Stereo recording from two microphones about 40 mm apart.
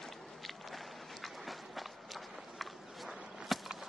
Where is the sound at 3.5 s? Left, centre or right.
Centre.